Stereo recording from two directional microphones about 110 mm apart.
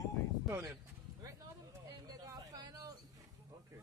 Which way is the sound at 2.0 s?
35° right (ahead or behind).